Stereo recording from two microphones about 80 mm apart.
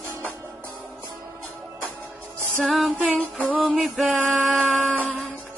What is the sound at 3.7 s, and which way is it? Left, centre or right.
Male singing, centre.